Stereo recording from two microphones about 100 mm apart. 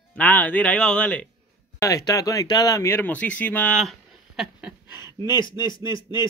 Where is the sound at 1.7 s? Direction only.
35° left (ahead or behind); by 3.8 s 15° left (ahead or behind).